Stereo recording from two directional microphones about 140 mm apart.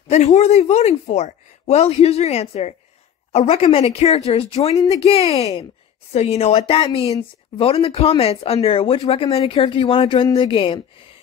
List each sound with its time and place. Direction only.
0.1 s speech: 55° left (ahead or behind); by 10.7 s 35° left (ahead or behind)